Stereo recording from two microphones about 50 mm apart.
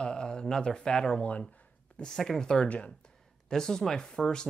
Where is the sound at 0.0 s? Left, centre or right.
Centre.